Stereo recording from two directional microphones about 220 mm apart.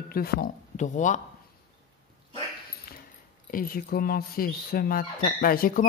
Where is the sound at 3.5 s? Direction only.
40° left (ahead or behind).